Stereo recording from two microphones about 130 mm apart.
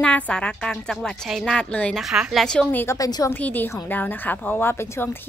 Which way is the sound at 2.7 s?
15° left (ahead or behind).